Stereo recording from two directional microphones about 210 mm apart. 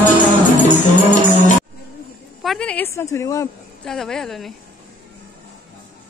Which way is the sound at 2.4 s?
Centre (ahead or behind).